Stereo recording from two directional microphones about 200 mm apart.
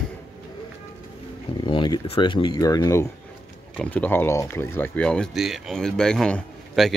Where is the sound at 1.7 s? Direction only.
25° left (ahead or behind).